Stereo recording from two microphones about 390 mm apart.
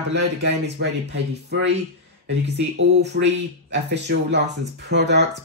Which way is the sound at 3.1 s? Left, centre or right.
Right.